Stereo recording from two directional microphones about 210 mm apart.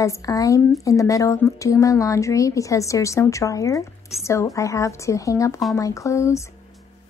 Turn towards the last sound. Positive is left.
turn(degrees=15)  # may be behind; listen again after turning